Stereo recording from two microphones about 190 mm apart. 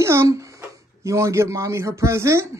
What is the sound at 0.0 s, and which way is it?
A child's voice, 15° right (ahead or behind).